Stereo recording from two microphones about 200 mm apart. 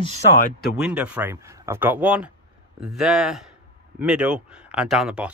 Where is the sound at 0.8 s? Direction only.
5° right (ahead or behind).